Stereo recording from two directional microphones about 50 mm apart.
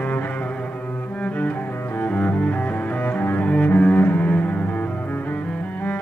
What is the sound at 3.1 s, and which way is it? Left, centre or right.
Double bass, left.